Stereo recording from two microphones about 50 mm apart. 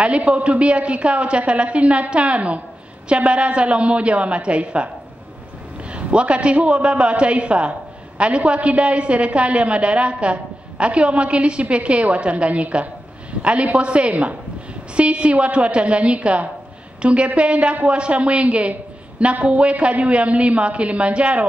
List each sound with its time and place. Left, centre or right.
0.0 s a woman's voice: right